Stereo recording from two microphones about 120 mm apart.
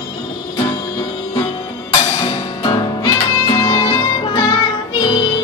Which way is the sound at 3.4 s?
35° left (ahead or behind).